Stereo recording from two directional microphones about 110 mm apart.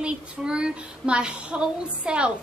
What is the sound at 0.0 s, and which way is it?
A woman's voice, 10° right (ahead or behind).